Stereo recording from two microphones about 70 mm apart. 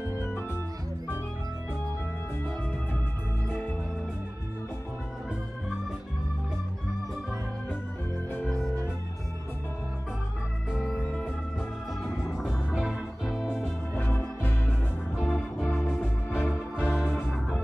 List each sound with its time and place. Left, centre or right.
0.2 s organ: left
3.4 s music: left
8.5 s organ: centre
12.7 s music: centre
13.9 s organ: left
15.2 s music: centre
16.0 s music: left
16.5 s music: centre